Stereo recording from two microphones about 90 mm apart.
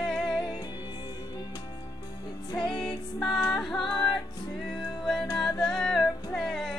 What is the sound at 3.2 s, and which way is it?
Music, 45° left (ahead or behind).